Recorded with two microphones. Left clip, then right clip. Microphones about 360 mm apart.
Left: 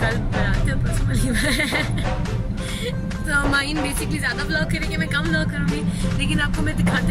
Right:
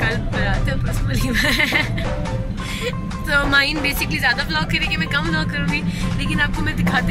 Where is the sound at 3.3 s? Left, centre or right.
Centre.